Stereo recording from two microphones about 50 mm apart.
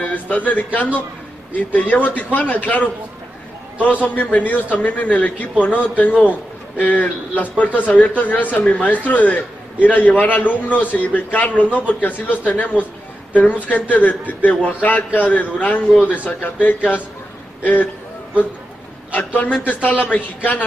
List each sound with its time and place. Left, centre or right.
0.0 s a man's voice: left
1.7 s a man's voice: left
8.6 s speech: left
8.9 s a man's voice: left
19.1 s a man's voice: left